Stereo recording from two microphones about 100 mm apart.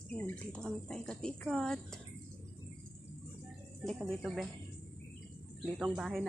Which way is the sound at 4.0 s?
Centre (ahead or behind).